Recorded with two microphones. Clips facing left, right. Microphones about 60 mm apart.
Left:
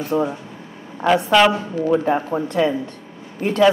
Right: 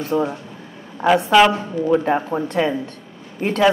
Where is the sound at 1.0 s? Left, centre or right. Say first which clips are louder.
Right 1 dB; centre.